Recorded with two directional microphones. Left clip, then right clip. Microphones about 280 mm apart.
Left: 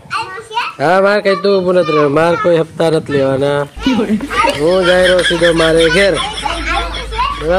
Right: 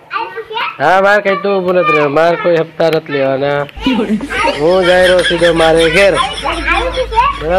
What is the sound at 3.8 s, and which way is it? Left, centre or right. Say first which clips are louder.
Speech: even; centre.